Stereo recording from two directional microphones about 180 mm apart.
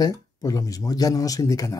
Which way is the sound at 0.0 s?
20° left (ahead or behind).